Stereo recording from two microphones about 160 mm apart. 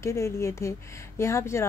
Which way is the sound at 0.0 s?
20° left (ahead or behind).